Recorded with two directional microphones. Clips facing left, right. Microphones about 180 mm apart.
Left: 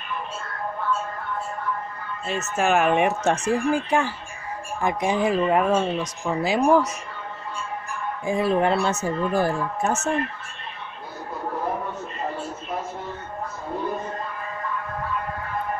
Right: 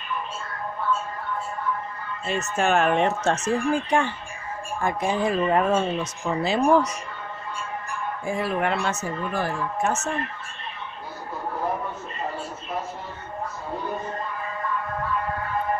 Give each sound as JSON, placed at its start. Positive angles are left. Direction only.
{"t": 2.2, "sound": "speech", "side_deg": 0}
{"t": 8.3, "sound": "speech", "side_deg": 25}